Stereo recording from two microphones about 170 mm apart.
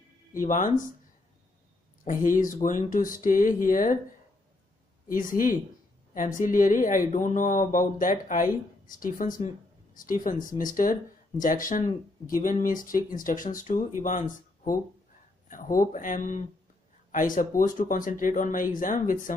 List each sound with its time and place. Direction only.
0.3 s speech: 50° left (ahead or behind)
2.0 s speech: 50° left (ahead or behind)
5.1 s speech: 50° left (ahead or behind)